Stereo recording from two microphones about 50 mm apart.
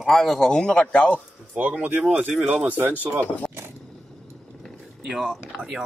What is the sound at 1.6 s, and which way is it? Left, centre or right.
Speech, right.